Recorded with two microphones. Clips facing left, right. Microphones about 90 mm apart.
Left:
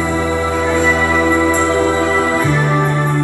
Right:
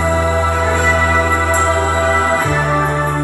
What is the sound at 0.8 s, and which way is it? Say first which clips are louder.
Music: left 1 dB; 20° right (ahead or behind).